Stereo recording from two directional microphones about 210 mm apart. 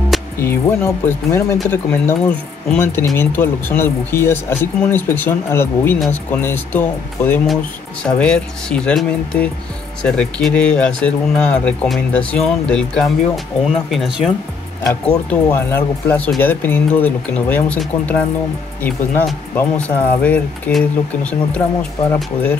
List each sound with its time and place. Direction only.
0.4 s speech: 10° left (ahead or behind)